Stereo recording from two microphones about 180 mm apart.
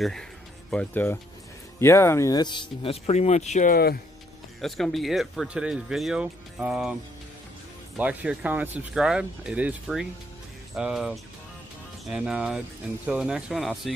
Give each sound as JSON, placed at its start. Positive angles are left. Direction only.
{"t": 0.7, "sound": "speech", "side_deg": 10}
{"t": 3.7, "sound": "speech", "side_deg": 55}
{"t": 4.6, "sound": "speech", "side_deg": 0}
{"t": 8.0, "sound": "speech", "side_deg": -5}